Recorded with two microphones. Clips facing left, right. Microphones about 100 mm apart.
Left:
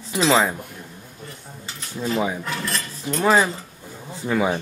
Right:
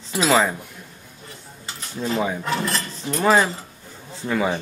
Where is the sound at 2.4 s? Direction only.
25° right (ahead or behind).